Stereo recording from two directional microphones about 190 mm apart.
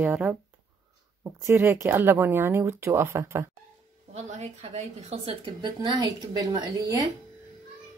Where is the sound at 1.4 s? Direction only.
15° right (ahead or behind).